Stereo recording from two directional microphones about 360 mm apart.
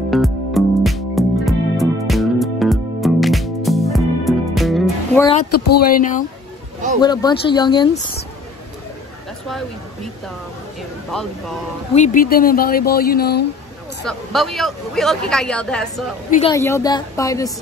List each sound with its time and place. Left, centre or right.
0.1 s music: centre
5.8 s speech: left
7.0 s a woman's voice: centre
11.1 s speech: centre
11.9 s speech: left
14.0 s speech: centre
16.3 s a woman's voice: centre